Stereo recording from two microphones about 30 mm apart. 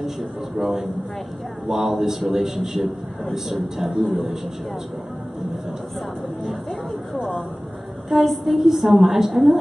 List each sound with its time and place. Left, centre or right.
0.0 s a woman's voice: centre
4.0 s a woman's voice: centre
8.1 s a woman's voice: centre